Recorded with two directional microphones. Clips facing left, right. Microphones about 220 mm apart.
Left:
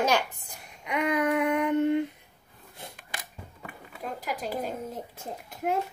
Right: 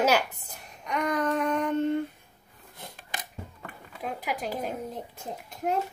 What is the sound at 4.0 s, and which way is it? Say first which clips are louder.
Speech: right 1 dB; 5° right (ahead or behind).